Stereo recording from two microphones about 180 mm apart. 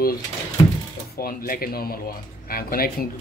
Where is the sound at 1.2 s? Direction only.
55° left (ahead or behind).